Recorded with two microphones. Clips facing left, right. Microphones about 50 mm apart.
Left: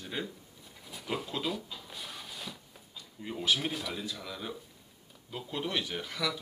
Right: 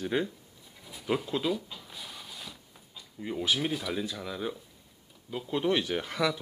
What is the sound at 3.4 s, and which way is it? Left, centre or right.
Speech, centre.